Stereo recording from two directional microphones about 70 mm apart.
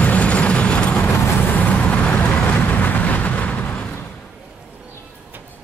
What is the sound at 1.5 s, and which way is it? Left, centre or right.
Vehicle, left.